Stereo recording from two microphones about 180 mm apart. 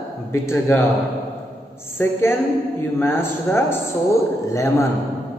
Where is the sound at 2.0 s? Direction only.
10° left (ahead or behind).